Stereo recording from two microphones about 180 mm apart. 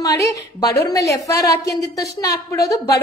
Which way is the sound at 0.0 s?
20° left (ahead or behind).